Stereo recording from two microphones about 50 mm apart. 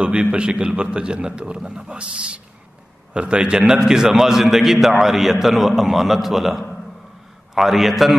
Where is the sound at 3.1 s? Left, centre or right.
Centre.